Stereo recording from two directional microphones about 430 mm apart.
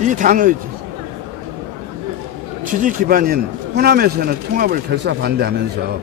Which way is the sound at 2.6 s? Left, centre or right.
Centre.